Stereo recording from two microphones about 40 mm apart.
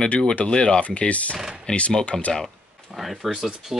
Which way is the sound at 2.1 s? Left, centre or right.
Centre.